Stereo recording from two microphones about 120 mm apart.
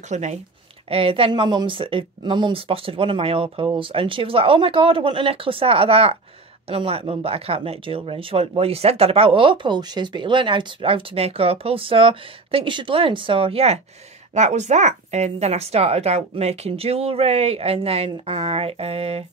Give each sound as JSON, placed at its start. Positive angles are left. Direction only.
{"t": 0.1, "sound": "speech", "side_deg": -75}
{"t": 0.8, "sound": "speech", "side_deg": -50}
{"t": 14.3, "sound": "a woman's voice", "side_deg": -75}